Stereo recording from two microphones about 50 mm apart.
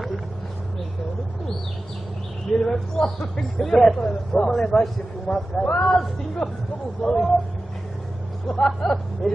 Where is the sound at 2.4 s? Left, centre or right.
Centre.